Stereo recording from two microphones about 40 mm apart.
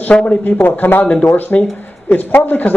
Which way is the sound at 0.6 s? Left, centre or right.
Left.